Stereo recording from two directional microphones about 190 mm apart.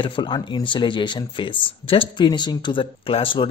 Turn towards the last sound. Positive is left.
turn(degrees=25)  # may be behind; listen again after turning